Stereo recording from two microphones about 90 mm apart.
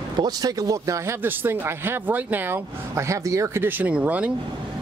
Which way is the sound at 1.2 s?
25° right (ahead or behind).